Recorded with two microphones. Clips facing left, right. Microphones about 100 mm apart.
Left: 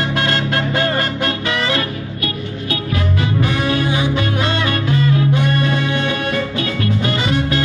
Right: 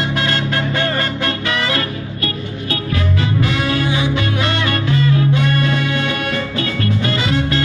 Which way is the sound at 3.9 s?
45° left (ahead or behind).